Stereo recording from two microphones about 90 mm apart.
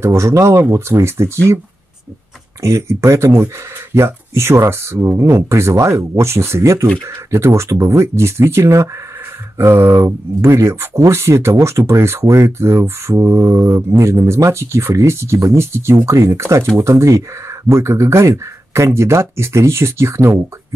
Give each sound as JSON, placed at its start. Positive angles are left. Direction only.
{"t": 0.0, "sound": "speech", "side_deg": -35}
{"t": 2.6, "sound": "speech", "side_deg": -30}